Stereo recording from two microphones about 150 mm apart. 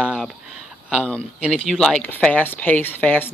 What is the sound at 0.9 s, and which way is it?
Speech, 10° left (ahead or behind).